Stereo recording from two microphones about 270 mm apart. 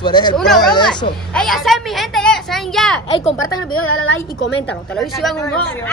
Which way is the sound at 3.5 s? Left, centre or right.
Left.